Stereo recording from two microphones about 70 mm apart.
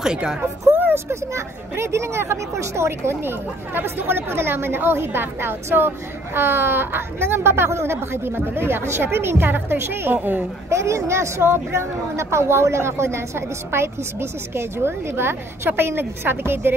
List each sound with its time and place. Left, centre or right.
0.0 s a woman's voice: centre
0.7 s a woman's voice: right
10.7 s speech: right